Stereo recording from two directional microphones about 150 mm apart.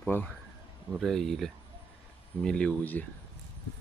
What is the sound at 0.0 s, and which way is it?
Speech, 10° left (ahead or behind).